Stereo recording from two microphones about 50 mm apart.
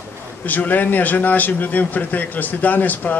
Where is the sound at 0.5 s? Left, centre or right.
Left.